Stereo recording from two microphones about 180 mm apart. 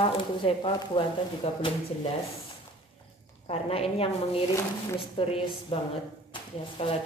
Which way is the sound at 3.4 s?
35° left (ahead or behind).